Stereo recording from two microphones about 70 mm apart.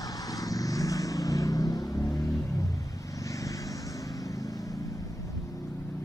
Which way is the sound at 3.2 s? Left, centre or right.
Left.